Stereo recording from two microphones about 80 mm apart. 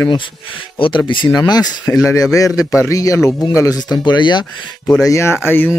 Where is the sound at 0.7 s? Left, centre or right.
Left.